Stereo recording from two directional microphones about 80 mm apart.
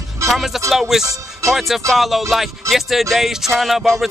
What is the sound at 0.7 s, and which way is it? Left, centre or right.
Music, centre.